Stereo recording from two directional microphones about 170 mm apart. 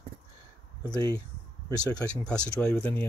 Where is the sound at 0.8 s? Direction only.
20° left (ahead or behind).